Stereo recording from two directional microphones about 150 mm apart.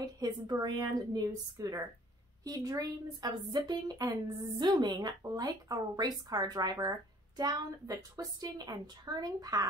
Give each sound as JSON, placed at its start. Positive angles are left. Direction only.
{"t": 0.0, "sound": "a woman's voice", "side_deg": -25}